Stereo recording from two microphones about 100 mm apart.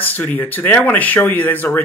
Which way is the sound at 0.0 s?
15° left (ahead or behind).